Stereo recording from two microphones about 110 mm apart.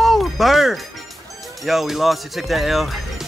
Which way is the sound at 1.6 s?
Centre (ahead or behind).